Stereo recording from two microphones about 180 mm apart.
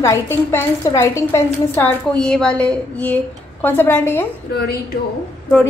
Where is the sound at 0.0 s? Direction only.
15° left (ahead or behind).